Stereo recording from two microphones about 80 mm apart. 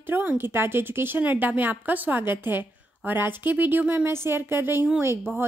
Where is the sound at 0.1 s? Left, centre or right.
Right.